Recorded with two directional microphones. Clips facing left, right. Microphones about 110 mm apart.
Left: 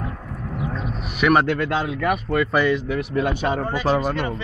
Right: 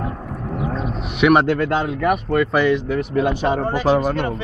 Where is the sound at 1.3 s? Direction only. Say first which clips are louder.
Right 2 dB; 25° right (ahead or behind).